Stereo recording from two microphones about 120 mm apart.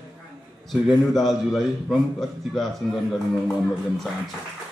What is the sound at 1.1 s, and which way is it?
A man's voice, centre (ahead or behind).